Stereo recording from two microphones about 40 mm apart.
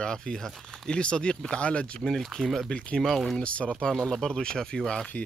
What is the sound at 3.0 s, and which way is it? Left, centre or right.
Speech, centre.